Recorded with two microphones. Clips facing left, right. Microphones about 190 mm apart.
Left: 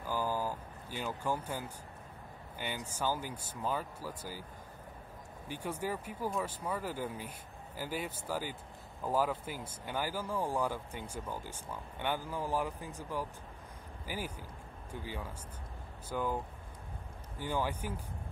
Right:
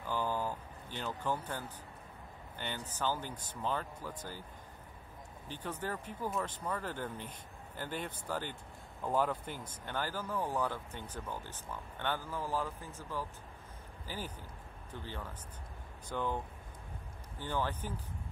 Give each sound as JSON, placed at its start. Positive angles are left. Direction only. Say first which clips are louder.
{"t": 0.0, "sound": "a sound", "louder": "left 1 dB", "side_deg": 10}
{"t": 2.6, "sound": "speech", "louder": "left 1 dB", "side_deg": 10}
{"t": 5.5, "sound": "speech", "louder": "left 3 dB", "side_deg": 10}
{"t": 17.4, "sound": "speech", "louder": "left 2 dB", "side_deg": 10}